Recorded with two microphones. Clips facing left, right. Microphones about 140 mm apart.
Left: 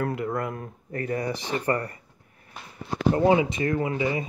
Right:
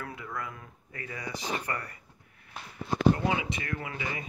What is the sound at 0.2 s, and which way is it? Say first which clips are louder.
Speech: left 10 dB; 55° left (ahead or behind).